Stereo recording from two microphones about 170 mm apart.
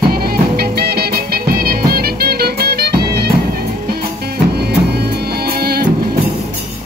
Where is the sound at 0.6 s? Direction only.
65° right (ahead or behind).